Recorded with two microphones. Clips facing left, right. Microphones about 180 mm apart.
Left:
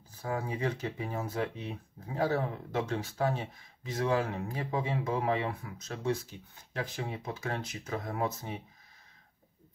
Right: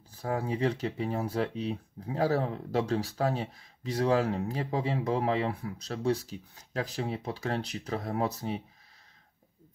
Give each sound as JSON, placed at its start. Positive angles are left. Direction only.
{"t": 0.2, "sound": "speech", "side_deg": -35}